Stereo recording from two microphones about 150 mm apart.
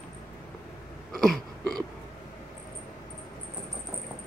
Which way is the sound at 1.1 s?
Centre (ahead or behind).